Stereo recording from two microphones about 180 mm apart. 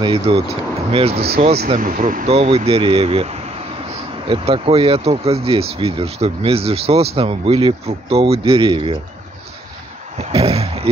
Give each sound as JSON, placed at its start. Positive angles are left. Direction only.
{"t": 0.0, "sound": "speech", "side_deg": -30}
{"t": 1.7, "sound": "speech", "side_deg": -45}
{"t": 2.3, "sound": "speech", "side_deg": -35}
{"t": 10.3, "sound": "a sound", "side_deg": -35}